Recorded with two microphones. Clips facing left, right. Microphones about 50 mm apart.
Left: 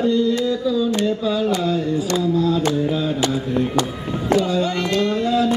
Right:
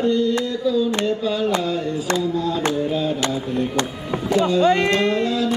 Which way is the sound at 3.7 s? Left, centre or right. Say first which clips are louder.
Left 1 dB; right.